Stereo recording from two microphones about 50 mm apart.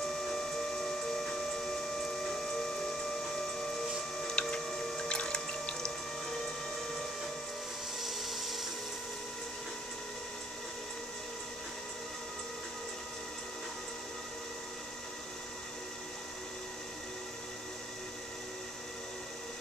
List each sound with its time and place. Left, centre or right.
0.3 s a sound: centre
4.4 s tick-tock: centre
5.0 s music: centre
8.0 s dental drill: centre